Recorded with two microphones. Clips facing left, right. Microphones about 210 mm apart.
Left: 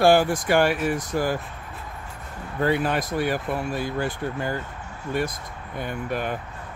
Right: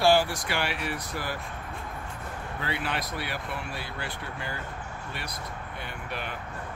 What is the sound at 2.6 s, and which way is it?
Speech, 45° left (ahead or behind).